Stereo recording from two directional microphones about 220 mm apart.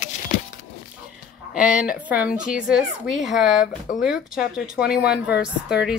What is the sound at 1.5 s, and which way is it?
A woman's voice, 5° right (ahead or behind).